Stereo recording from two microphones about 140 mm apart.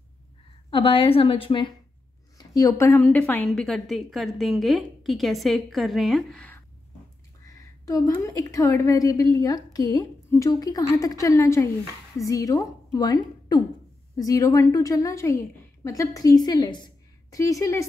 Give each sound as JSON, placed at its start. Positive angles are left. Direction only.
{"t": 0.7, "sound": "a woman's voice", "side_deg": 40}
{"t": 2.3, "sound": "a woman's voice", "side_deg": 25}
{"t": 7.4, "sound": "a woman's voice", "side_deg": 25}